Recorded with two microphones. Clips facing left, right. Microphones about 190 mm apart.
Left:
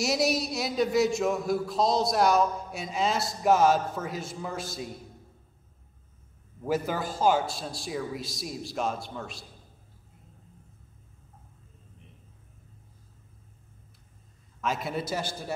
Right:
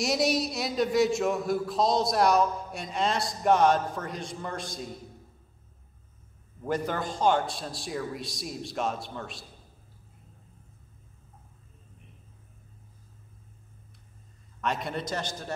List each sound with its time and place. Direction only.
0.0 s a man's voice: centre (ahead or behind)
6.6 s a man's voice: 5° left (ahead or behind)
14.6 s a man's voice: centre (ahead or behind)